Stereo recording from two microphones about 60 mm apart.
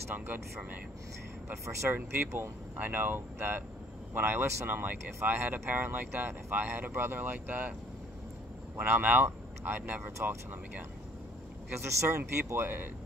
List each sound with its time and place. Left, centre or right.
0.1 s speech: right
1.5 s speech: right
1.9 s speech: right
8.7 s speech: right
11.8 s speech: right